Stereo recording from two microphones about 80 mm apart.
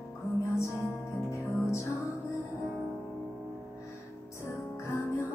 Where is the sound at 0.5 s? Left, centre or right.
Left.